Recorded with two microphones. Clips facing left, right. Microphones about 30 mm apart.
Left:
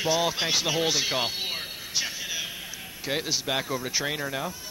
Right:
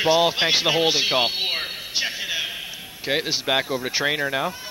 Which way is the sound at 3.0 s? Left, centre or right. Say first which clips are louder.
Right 6 dB; right.